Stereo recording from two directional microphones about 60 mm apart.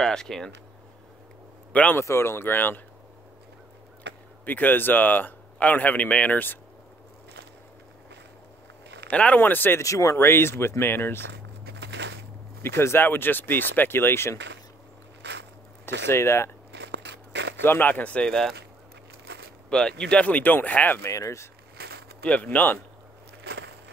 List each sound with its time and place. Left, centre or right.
0.0 s speech: centre
1.7 s a man's voice: left
2.0 s speech: left
4.5 s speech: left
9.1 s speech: left
9.4 s speech: left
9.8 s speech: left
10.1 s speech: left
12.6 s speech: left
15.8 s speech: left
17.6 s speech: left
19.7 s speech: centre
21.1 s speech: left
22.2 s speech: left